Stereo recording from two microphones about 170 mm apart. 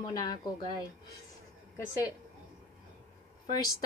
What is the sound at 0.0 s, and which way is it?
Speech, 20° left (ahead or behind).